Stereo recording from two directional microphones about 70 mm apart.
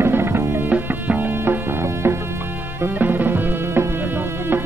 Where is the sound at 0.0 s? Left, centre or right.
Right.